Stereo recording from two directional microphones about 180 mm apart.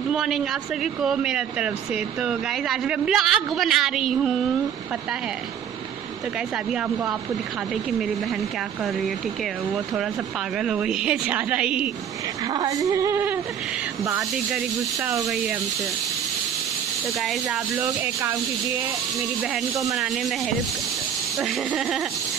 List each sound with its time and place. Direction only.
0.1 s a woman's voice: centre (ahead or behind)
10.6 s a woman's voice: 5° right (ahead or behind)
12.5 s speech: 20° right (ahead or behind)
17.7 s speech: 10° right (ahead or behind)
19.8 s a woman's voice: centre (ahead or behind)
21.4 s a woman's voice: centre (ahead or behind)